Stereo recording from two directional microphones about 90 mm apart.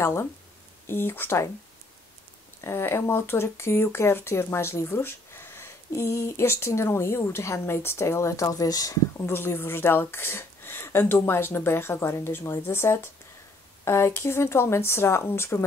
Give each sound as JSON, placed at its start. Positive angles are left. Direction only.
{"t": 0.0, "sound": "speech", "side_deg": 30}
{"t": 2.6, "sound": "speech", "side_deg": 25}
{"t": 9.2, "sound": "speech", "side_deg": 25}